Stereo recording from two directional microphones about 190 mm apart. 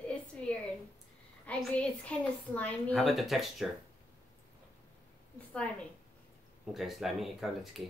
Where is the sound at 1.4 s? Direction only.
5° left (ahead or behind).